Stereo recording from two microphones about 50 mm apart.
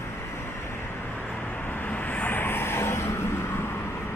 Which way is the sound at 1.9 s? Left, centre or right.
Left.